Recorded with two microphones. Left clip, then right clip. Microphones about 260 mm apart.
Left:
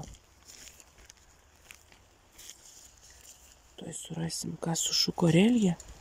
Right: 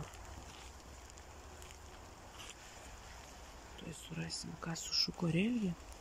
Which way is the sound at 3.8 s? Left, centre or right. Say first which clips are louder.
Left 8 dB; left.